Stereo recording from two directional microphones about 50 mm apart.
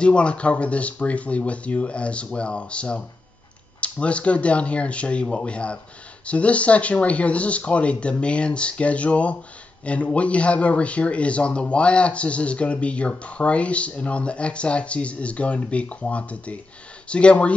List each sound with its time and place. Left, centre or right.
0.0 s speech: left